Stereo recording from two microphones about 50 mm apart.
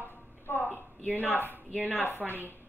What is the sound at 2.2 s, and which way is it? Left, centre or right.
Speech, right.